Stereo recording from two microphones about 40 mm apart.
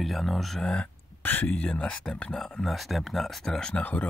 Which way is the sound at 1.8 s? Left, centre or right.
Left.